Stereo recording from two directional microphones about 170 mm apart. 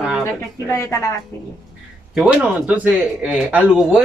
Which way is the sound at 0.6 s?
15° left (ahead or behind).